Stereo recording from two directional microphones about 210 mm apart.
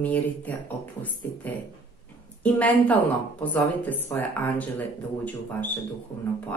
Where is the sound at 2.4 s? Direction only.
5° left (ahead or behind).